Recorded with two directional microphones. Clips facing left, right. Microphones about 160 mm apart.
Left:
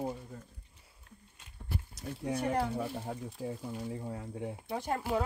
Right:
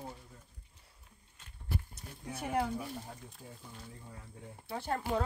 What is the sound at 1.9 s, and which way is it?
Speech, 70° left (ahead or behind).